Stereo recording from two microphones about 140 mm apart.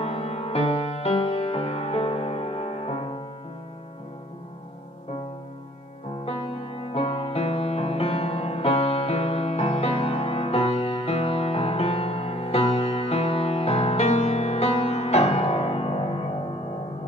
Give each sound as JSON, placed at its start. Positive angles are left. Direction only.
{"t": 0.0, "sound": "music", "side_deg": 45}
{"t": 6.2, "sound": "music", "side_deg": 40}